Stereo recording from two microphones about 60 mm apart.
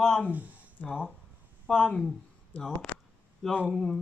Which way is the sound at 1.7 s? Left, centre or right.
Centre.